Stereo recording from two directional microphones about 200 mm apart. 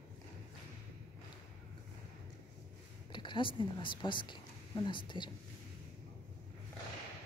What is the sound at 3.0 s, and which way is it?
Speech, 25° left (ahead or behind).